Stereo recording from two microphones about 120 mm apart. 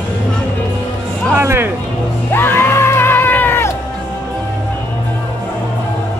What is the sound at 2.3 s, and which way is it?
Music, 20° left (ahead or behind).